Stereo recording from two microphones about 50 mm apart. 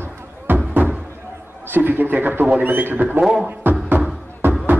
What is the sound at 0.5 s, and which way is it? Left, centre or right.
Music, right.